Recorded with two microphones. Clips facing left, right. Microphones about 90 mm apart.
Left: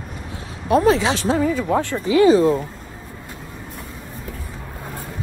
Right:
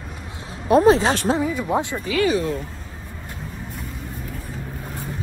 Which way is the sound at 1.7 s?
15° right (ahead or behind).